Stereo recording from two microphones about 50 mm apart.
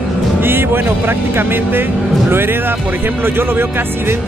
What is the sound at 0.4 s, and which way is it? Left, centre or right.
Speech, right.